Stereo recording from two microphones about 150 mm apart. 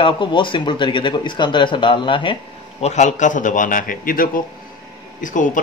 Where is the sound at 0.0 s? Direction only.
35° left (ahead or behind).